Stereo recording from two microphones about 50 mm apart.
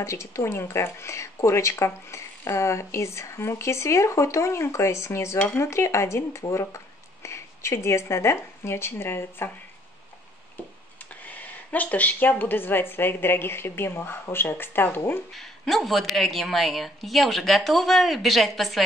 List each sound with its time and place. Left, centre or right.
0.0 s speech: left
7.2 s speech: left
11.2 s speech: left
15.3 s a woman's voice: centre